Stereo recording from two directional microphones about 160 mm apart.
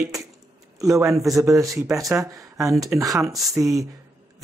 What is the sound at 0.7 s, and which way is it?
Speech, 20° right (ahead or behind).